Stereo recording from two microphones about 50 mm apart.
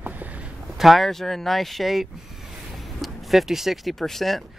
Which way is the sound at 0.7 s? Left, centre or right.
Centre.